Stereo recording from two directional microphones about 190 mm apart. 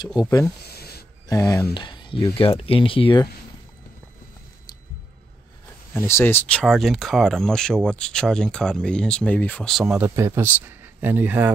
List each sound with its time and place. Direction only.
0.7 s a sound: 55° left (ahead or behind)
1.3 s speech: 15° left (ahead or behind)
5.9 s speech: 15° left (ahead or behind); by 11.5 s 10° right (ahead or behind)